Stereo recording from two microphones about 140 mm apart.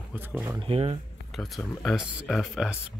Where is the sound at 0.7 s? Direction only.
40° right (ahead or behind).